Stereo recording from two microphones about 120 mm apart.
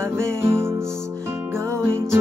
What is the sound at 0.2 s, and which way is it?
Music, 20° right (ahead or behind).